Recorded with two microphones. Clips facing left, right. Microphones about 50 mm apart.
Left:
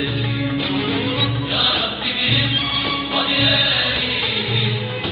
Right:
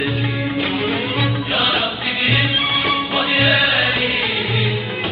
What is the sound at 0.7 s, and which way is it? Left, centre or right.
Music, right.